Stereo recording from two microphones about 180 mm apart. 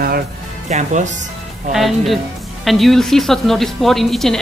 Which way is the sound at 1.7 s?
Centre (ahead or behind).